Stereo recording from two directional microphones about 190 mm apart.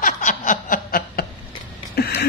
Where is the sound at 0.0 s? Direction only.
45° left (ahead or behind).